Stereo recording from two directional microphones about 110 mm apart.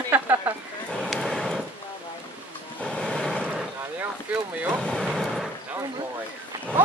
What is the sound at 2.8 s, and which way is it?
Music, 10° left (ahead or behind).